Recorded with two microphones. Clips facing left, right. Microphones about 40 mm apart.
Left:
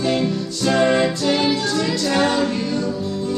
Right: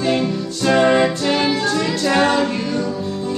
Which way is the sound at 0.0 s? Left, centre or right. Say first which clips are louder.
Right 1 dB; centre.